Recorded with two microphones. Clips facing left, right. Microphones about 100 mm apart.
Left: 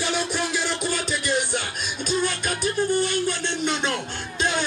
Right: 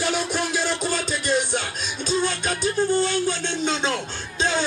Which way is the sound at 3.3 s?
55° left (ahead or behind).